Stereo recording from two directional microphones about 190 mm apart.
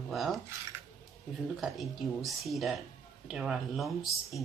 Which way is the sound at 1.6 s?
Centre (ahead or behind).